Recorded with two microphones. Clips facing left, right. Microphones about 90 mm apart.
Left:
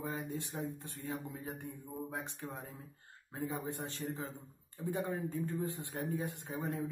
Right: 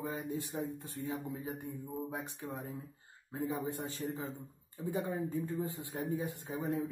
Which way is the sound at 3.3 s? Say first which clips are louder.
Right 3 dB; 5° right (ahead or behind).